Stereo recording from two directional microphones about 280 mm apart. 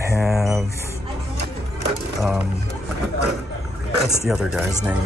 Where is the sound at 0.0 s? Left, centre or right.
Centre.